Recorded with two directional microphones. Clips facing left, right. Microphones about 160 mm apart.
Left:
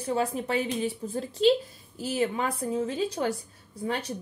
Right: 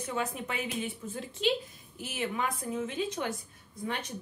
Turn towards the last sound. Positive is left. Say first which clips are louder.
# left 5 dB
turn(degrees=35)  # may be behind; listen again after turning